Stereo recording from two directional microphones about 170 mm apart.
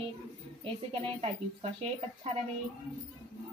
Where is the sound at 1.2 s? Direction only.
35° right (ahead or behind).